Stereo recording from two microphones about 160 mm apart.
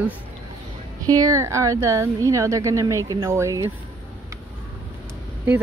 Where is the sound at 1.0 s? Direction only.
25° right (ahead or behind).